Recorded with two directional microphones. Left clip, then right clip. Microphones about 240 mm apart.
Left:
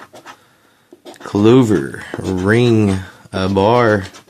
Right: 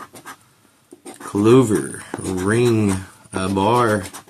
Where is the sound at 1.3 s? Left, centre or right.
Left.